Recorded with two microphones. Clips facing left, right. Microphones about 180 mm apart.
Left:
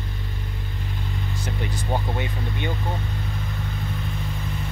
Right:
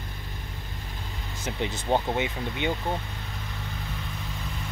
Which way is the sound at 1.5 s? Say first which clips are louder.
Right 3 dB; 20° right (ahead or behind).